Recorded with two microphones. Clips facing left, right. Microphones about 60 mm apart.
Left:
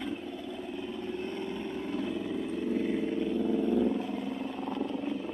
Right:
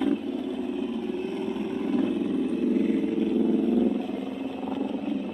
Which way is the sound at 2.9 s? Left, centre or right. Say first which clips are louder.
Right 5 dB; centre.